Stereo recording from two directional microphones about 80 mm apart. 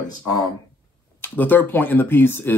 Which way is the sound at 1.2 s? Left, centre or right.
Left.